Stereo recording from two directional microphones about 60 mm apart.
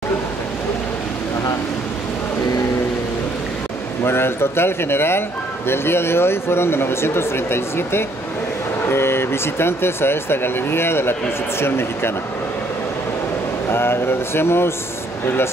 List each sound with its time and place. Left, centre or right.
4.0 s speech: left
13.7 s speech: left